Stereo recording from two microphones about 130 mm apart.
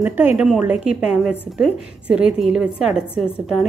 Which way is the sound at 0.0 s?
15° right (ahead or behind).